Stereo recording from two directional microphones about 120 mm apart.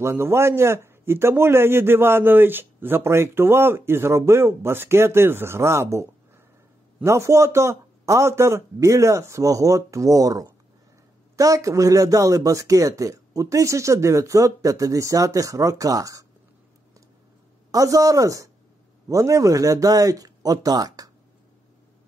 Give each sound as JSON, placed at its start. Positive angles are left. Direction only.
{"t": 0.0, "sound": "a man's voice", "side_deg": -20}
{"t": 17.6, "sound": "a man's voice", "side_deg": -30}